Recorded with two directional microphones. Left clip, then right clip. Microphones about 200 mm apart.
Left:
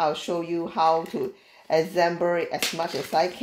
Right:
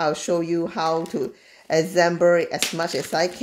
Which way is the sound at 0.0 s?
30° right (ahead or behind).